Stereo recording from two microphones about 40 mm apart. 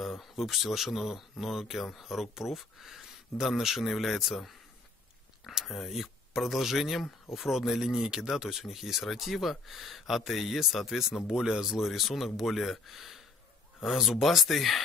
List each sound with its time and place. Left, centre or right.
0.0 s speech: centre
5.4 s a sound: centre
5.7 s speech: centre
7.9 s speech: centre
11.2 s speech: centre
11.7 s speech: centre